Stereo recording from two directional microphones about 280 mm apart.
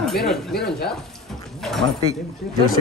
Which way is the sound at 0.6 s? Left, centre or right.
Left.